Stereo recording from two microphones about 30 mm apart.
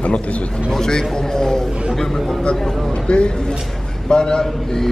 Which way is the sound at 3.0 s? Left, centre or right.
Left.